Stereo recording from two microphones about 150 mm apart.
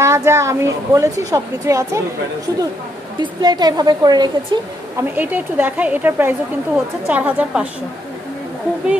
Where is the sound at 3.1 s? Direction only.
30° right (ahead or behind).